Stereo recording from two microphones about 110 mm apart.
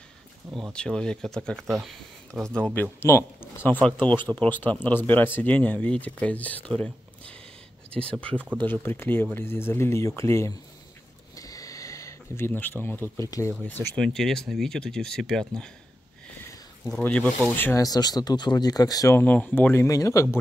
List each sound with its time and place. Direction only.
0.7 s speech: 10° left (ahead or behind)
2.5 s speech: 10° left (ahead or behind)
11.3 s a sound: 30° left (ahead or behind)
13.2 s speech: 25° left (ahead or behind)
13.6 s speech: 15° left (ahead or behind)
13.9 s speech: 5° left (ahead or behind)
17.0 s speech: 15° left (ahead or behind)
17.7 s speech: 35° left (ahead or behind)
19.1 s speech: 15° left (ahead or behind)